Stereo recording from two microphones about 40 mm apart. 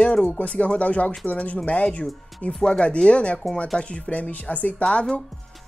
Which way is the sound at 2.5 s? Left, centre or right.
Centre.